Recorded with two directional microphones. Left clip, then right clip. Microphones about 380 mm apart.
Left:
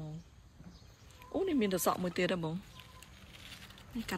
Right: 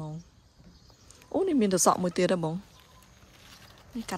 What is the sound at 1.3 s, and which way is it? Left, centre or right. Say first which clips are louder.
Speech: right 7 dB; right.